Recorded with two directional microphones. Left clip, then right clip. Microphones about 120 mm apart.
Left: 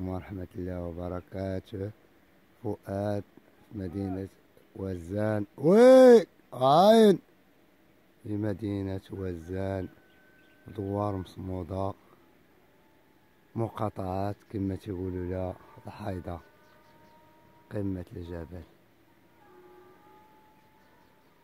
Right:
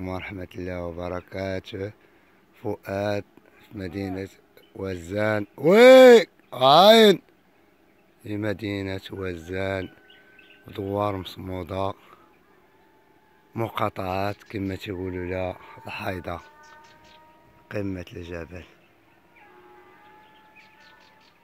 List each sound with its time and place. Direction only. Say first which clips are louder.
0.0 s speech: right 5 dB; 5° left (ahead or behind)
2.6 s speech: right 5 dB; 25° right (ahead or behind)
2.9 s speech: right 6 dB; 5° left (ahead or behind)
8.3 s speech: right 4 dB; centre (ahead or behind)
11.1 s speech: right 6 dB; centre (ahead or behind)
13.7 s speech: right 8 dB; centre (ahead or behind)
15.0 s speech: right 4 dB; 10° right (ahead or behind)
15.2 s speech: right 6 dB; centre (ahead or behind)
17.6 s speech: right 4 dB; 10° right (ahead or behind)